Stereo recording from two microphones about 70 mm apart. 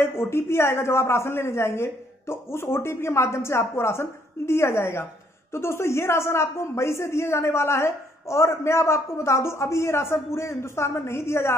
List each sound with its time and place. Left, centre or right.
0.0 s speech: left